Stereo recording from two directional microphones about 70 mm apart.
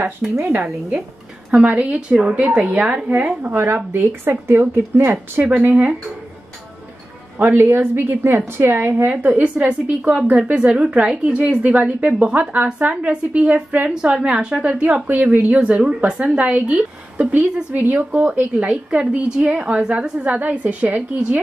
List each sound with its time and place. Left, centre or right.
0.2 s speech: centre
1.5 s a woman's voice: centre
7.3 s a woman's voice: right
9.1 s a woman's voice: centre